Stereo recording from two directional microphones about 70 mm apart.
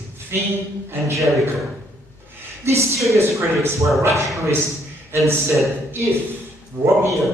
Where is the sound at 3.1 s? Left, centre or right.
Right.